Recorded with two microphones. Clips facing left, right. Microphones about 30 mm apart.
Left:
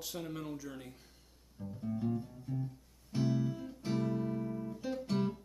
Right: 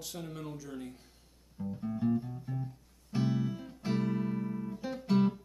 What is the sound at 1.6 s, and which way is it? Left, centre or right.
Music, right.